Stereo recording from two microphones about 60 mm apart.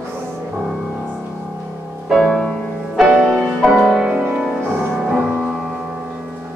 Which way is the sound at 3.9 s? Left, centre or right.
Centre.